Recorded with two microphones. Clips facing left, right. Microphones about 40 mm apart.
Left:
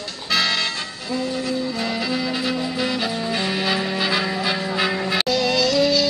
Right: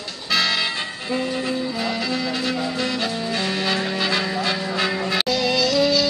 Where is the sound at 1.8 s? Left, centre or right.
Centre.